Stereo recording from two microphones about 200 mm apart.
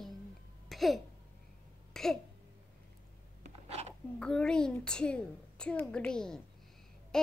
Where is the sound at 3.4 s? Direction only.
30° right (ahead or behind).